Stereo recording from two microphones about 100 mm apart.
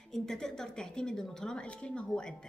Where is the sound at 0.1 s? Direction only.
5° left (ahead or behind).